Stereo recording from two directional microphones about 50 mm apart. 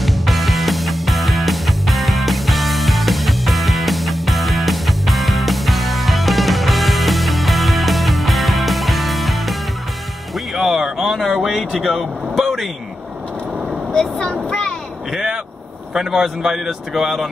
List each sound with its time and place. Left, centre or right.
0.0 s music: centre
13.9 s speech: centre
15.1 s vehicle: centre
15.9 s speech: centre